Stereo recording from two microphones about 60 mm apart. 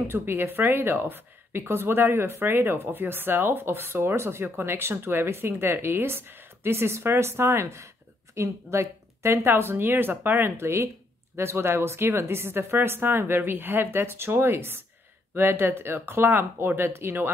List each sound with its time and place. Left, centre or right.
0.1 s a woman's voice: right
10.6 s a woman's voice: right